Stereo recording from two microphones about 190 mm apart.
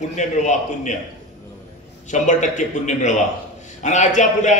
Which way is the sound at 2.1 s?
40° left (ahead or behind).